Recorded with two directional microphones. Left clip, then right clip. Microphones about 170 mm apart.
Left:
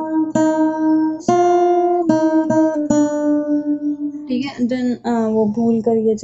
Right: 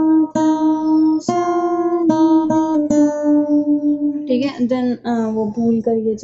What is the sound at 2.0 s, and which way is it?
Music, 45° left (ahead or behind).